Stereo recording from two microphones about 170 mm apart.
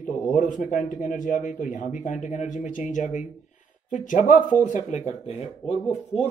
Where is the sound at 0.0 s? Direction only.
50° left (ahead or behind).